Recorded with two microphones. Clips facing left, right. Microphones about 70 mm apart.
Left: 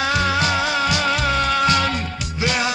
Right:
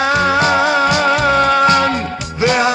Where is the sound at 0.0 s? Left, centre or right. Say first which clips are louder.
Right 6 dB; right.